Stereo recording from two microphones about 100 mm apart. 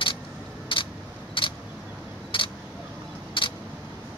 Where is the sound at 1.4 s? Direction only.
60° left (ahead or behind).